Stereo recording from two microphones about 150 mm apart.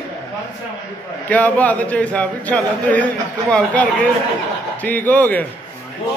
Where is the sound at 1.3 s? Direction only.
10° left (ahead or behind).